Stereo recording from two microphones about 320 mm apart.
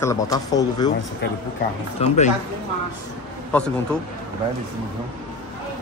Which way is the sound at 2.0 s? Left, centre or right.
Left.